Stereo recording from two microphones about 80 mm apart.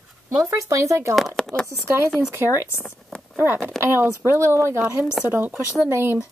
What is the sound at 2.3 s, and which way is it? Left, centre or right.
Speech, right.